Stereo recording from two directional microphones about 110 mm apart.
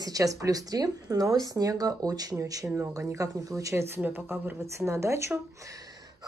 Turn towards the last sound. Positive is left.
turn(degrees=-25)  # may be behind; listen again after turning